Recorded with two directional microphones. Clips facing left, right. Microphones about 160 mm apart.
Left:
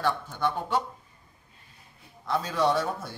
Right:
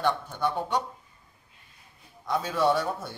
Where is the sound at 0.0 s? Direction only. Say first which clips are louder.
Right 1 dB; 15° right (ahead or behind).